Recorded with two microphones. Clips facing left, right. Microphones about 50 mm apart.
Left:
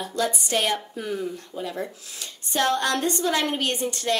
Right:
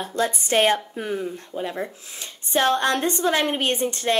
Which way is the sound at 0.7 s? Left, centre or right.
Right.